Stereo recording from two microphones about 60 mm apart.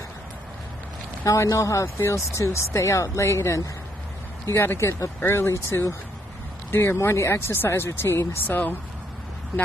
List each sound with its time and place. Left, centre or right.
1.2 s speech: left
5.2 s speech: left
8.5 s speech: left